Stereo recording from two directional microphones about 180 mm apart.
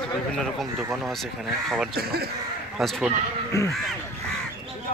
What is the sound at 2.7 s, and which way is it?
Speech, centre (ahead or behind).